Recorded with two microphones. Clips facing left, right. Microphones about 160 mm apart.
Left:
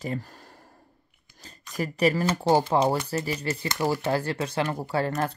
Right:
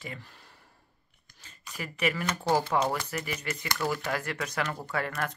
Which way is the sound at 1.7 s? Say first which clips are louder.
Left 7 dB; 35° left (ahead or behind).